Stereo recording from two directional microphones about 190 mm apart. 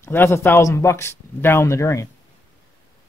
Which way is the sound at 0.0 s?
15° left (ahead or behind).